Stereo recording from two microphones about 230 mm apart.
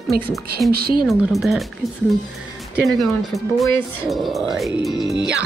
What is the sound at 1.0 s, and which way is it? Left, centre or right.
Speech, centre.